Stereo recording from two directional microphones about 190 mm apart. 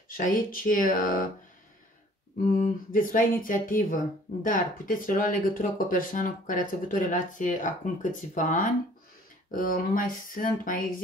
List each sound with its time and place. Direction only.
0.2 s speech: 45° left (ahead or behind)
2.6 s speech: 45° left (ahead or behind)